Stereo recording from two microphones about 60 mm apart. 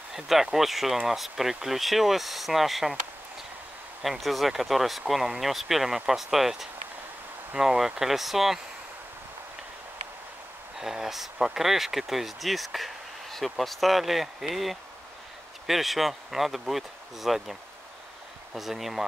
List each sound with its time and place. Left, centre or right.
0.1 s speech: centre
4.0 s speech: centre
10.8 s speech: centre